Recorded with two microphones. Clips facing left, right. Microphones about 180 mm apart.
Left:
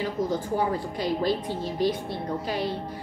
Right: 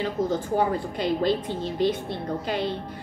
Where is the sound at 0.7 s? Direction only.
25° right (ahead or behind).